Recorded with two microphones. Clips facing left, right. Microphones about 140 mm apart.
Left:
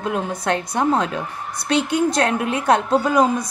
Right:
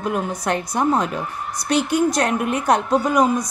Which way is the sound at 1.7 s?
25° left (ahead or behind).